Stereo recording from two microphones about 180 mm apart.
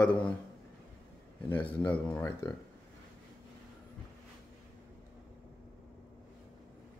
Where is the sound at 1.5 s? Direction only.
10° left (ahead or behind).